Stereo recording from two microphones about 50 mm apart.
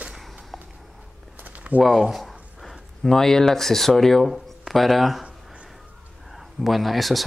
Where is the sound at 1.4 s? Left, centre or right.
Right.